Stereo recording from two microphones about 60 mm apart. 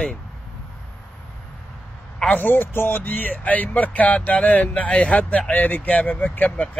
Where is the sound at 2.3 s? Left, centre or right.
Left.